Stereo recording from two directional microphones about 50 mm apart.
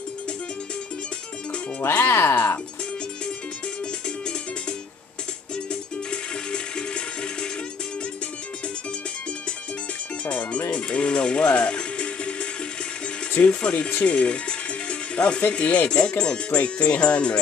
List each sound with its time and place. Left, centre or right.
1.8 s speech: left
2.3 s speech: left
5.7 s music: centre
10.2 s music: left
13.3 s speech: left
14.9 s music: left
15.5 s speech: left